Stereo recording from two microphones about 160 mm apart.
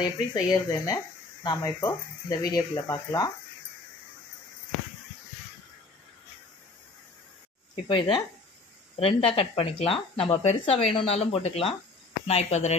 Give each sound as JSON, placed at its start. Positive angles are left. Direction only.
{"t": 0.0, "sound": "speech", "side_deg": 25}
{"t": 7.7, "sound": "speech", "side_deg": 35}